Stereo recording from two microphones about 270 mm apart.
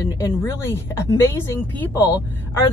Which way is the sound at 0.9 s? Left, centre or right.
Centre.